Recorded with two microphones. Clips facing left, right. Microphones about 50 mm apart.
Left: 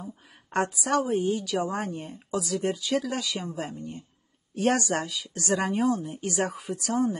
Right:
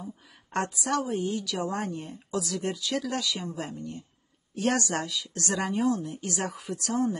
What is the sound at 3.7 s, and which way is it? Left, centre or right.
Speech, left.